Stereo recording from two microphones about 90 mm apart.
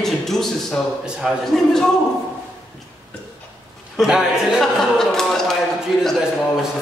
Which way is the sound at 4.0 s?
5° right (ahead or behind).